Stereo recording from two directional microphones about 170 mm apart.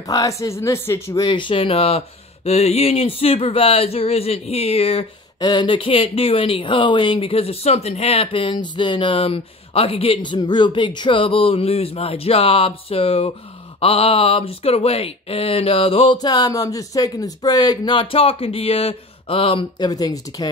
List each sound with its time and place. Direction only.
0.1 s speech: 20° left (ahead or behind)